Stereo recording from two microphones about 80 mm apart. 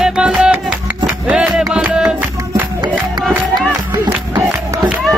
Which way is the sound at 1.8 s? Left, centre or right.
Centre.